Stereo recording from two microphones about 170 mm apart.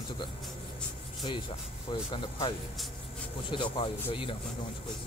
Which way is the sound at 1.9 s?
30° left (ahead or behind).